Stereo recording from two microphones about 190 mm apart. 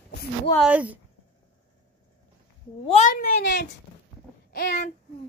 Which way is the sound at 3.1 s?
50° left (ahead or behind).